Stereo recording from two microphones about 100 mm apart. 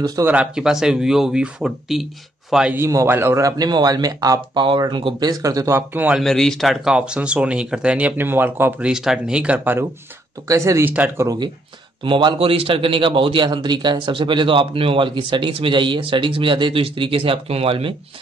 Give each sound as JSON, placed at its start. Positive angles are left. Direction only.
{"t": 0.2, "sound": "a man's voice", "side_deg": -15}
{"t": 2.9, "sound": "speech", "side_deg": -25}
{"t": 4.6, "sound": "speech", "side_deg": -50}
{"t": 5.3, "sound": "speech", "side_deg": -35}
{"t": 5.8, "sound": "speech", "side_deg": -20}
{"t": 6.2, "sound": "speech", "side_deg": 5}
{"t": 8.8, "sound": "speech", "side_deg": -5}
{"t": 10.5, "sound": "speech", "side_deg": -30}
{"t": 12.0, "sound": "a man's voice", "side_deg": -55}